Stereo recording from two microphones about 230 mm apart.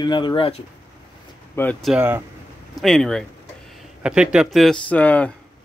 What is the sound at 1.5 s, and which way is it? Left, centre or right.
Speech, centre.